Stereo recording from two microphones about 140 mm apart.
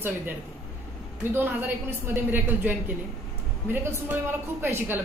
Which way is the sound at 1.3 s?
15° right (ahead or behind).